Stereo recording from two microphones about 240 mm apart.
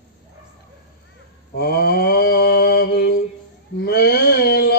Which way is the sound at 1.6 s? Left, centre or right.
Left.